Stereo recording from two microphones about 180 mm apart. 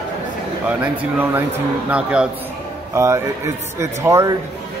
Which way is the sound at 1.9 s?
5° right (ahead or behind).